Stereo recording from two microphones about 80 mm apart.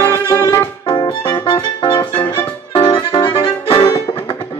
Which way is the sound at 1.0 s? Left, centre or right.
Left.